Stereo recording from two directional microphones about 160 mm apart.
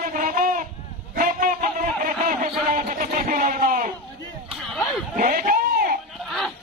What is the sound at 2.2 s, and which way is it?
Speech, 60° right (ahead or behind).